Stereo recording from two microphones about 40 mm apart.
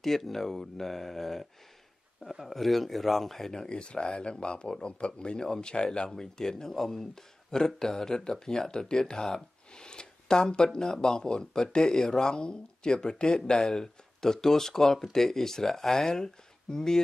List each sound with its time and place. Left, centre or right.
0.0 s speech: centre
3.6 s speech: left
9.8 s a sound: centre
10.5 s speech: left